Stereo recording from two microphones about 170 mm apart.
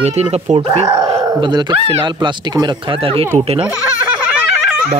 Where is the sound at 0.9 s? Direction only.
20° right (ahead or behind).